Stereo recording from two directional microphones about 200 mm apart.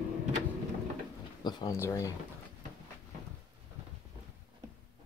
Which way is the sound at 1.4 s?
20° left (ahead or behind).